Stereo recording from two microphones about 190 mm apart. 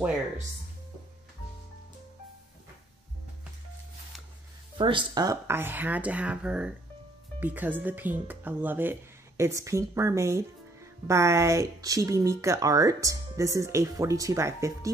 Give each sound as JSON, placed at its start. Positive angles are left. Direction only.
{"t": 4.7, "sound": "speech", "side_deg": -25}